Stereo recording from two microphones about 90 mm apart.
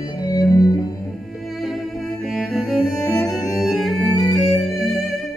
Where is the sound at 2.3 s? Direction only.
Centre (ahead or behind).